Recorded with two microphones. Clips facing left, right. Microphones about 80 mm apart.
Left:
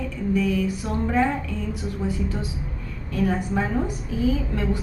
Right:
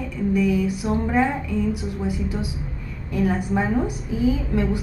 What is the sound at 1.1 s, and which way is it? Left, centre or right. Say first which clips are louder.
A woman's voice: even; centre.